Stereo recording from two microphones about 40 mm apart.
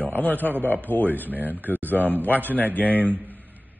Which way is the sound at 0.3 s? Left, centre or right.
Right.